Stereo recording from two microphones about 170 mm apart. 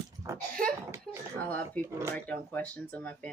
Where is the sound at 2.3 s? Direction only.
10° left (ahead or behind).